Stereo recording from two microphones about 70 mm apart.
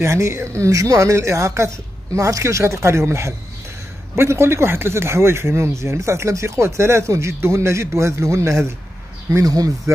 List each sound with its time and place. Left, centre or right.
0.0 s speech: right
9.3 s speech: right